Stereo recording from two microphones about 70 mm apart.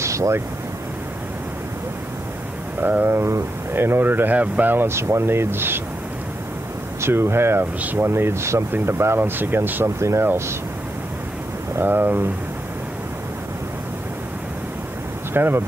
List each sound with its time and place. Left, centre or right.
0.0 s a sound: right
2.8 s speech: right
7.0 s speech: right
8.1 s speech: right
9.8 s speech: right
11.7 s speech: right
15.3 s speech: right